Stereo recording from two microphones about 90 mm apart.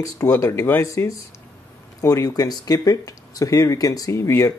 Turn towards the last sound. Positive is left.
turn(degrees=35)  # may be behind; listen again after turning